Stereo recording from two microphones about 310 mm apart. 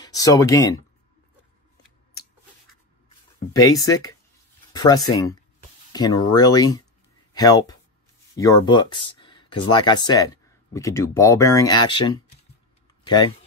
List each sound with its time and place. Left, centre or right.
0.0 s speech: centre
3.5 s speech: centre